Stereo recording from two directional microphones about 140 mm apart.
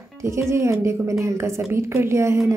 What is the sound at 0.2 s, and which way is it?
Speech, 20° right (ahead or behind).